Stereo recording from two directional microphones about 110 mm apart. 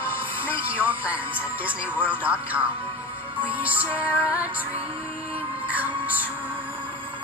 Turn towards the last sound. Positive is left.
turn(degrees=-15)  # may be behind; listen again after turning